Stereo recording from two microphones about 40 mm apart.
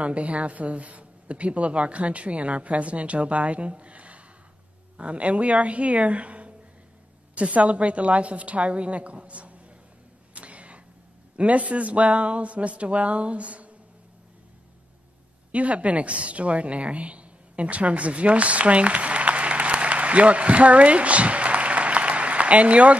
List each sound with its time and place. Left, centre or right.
0.0 s speech: right
10.3 s a sound: right
11.3 s speech: right
15.5 s a woman's voice: right